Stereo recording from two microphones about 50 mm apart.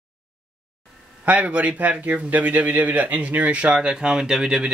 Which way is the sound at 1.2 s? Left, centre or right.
Right.